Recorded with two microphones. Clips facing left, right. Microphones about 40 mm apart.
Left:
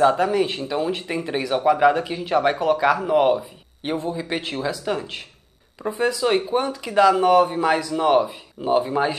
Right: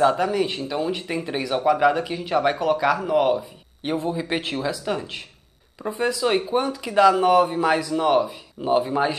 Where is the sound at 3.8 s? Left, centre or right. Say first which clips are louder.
Right 1 dB; centre.